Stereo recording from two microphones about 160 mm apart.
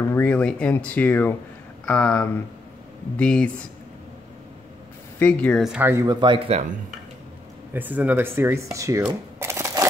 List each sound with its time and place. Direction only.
0.0 s speech: 10° left (ahead or behind)
5.2 s speech: 10° left (ahead or behind)
5.6 s speech: 5° right (ahead or behind)
5.9 s speech: 20° right (ahead or behind)
7.7 s speech: 10° right (ahead or behind)